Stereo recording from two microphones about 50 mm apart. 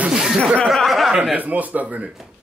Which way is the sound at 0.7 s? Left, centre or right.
Centre.